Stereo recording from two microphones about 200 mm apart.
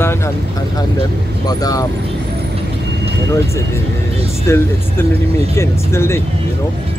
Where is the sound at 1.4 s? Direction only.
20° left (ahead or behind).